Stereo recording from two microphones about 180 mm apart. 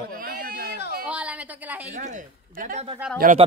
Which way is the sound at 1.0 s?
5° right (ahead or behind).